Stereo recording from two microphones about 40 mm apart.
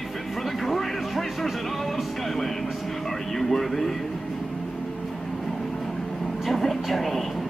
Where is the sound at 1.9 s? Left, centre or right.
Centre.